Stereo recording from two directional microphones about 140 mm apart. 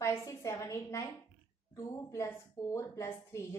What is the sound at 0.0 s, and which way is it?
A woman's voice, 20° left (ahead or behind).